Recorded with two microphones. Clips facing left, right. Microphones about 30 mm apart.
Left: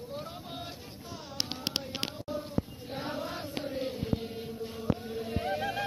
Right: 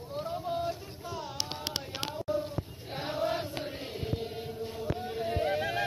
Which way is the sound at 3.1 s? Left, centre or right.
Right.